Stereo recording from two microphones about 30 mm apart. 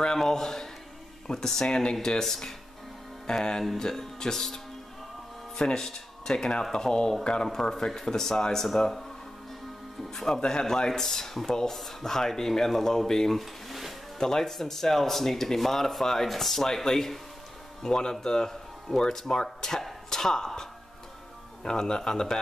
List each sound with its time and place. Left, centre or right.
0.2 s a man's voice: centre
3.3 s speech: left
5.6 s speech: left
10.2 s speech: left
10.9 s speech: centre
13.4 s a sound: centre
14.1 s speech: centre
17.8 s speech: left
20.1 s a sound: centre
21.6 s speech: left